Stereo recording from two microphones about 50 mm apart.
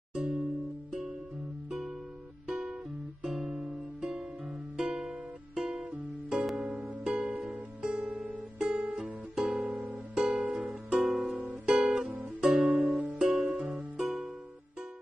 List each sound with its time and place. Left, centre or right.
0.1 s music: centre
2.4 s music: centre
10.4 s music: right
11.0 s music: centre
11.6 s guitar: centre
12.4 s music: centre